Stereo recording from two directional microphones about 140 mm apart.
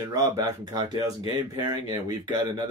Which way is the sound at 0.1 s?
25° right (ahead or behind).